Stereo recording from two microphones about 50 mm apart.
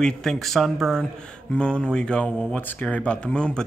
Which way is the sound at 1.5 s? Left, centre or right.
Centre.